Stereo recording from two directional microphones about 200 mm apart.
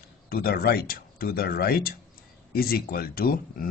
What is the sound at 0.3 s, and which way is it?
Speech, 45° left (ahead or behind).